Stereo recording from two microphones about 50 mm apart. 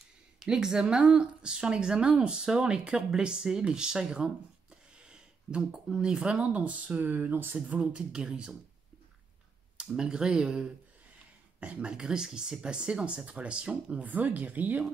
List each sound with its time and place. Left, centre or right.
0.4 s speech: centre
6.3 s speech: right
7.9 s speech: centre
9.9 s speech: centre
14.0 s speech: right